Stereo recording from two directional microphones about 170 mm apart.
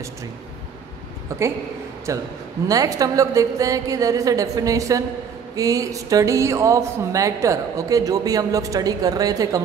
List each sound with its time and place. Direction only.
1.3 s speech: 20° right (ahead or behind)